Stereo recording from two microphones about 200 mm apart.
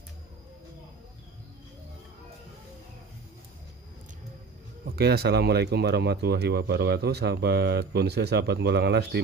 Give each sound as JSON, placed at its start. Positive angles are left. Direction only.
{"t": 4.8, "sound": "speech", "side_deg": -50}